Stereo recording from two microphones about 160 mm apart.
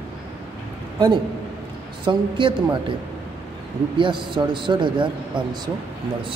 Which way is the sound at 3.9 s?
30° right (ahead or behind).